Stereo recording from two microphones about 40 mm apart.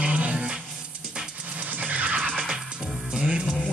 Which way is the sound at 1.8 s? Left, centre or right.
Right.